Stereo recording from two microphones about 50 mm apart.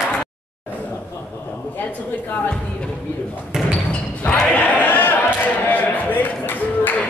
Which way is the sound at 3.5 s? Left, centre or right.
Centre.